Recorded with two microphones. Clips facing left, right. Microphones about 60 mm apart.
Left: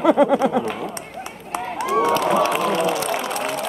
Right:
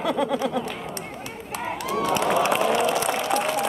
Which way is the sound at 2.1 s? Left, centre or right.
Centre.